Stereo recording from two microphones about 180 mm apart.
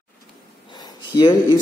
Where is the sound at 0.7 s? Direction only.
25° left (ahead or behind).